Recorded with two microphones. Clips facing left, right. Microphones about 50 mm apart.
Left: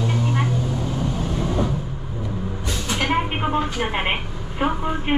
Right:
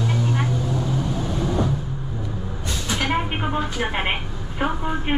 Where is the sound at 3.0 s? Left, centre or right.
Centre.